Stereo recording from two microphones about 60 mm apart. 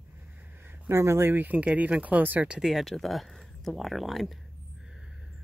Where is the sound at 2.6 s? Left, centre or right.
Centre.